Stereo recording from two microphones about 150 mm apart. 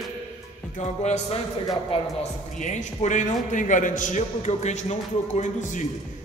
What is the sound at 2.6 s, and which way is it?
A man's voice, 50° left (ahead or behind).